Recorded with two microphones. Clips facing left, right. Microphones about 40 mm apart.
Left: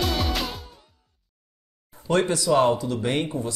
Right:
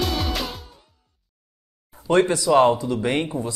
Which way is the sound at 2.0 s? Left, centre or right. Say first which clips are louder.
Right 3 dB; right.